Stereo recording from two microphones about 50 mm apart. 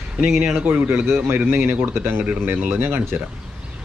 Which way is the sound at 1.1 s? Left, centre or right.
Right.